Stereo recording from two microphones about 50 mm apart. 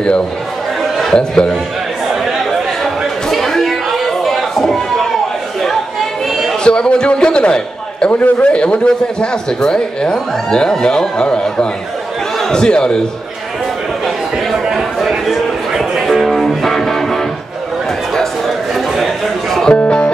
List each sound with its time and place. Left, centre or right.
1.0 s a man's voice: centre
3.3 s a sound: centre
6.6 s a man's voice: centre
14.8 s music: centre
18.9 s a sound: centre
19.8 s music: left